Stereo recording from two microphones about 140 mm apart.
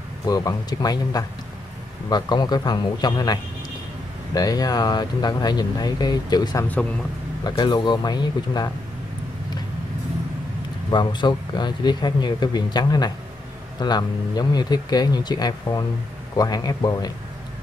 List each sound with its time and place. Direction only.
0.3 s a man's voice: 25° left (ahead or behind)
10.9 s a man's voice: 30° left (ahead or behind)